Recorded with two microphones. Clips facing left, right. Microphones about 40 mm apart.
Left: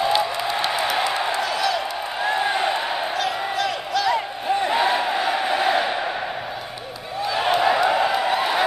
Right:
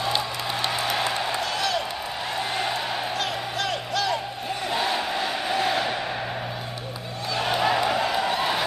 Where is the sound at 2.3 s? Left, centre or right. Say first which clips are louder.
Left 6 dB; centre.